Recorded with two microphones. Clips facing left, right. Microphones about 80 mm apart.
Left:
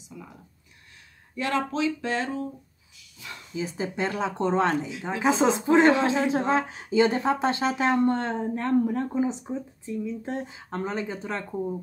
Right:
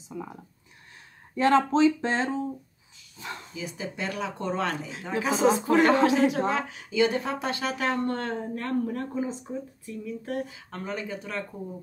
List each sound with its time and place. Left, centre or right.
0.1 s speech: right
1.3 s speech: right
3.5 s speech: left